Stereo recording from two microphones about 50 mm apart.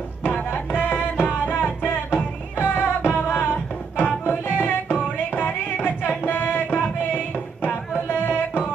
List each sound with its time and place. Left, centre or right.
0.2 s music: left